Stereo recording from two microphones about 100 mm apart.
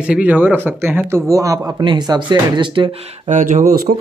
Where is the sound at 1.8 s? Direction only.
50° right (ahead or behind).